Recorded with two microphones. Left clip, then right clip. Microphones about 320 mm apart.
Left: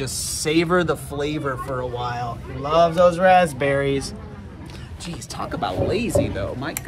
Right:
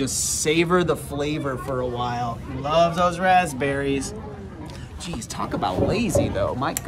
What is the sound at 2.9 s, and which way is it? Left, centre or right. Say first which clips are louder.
Speech: left 4 dB; centre.